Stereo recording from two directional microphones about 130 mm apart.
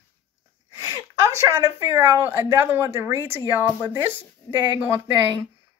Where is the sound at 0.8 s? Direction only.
25° right (ahead or behind).